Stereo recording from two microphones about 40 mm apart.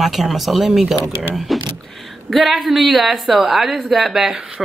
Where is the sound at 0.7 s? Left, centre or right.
Centre.